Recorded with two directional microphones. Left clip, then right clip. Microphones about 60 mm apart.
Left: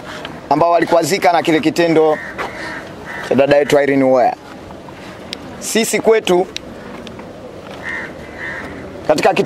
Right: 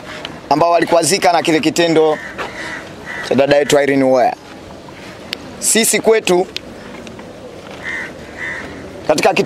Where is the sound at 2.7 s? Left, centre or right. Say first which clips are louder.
Right 1 dB; centre.